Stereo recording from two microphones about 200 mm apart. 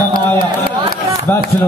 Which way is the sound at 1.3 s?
10° left (ahead or behind).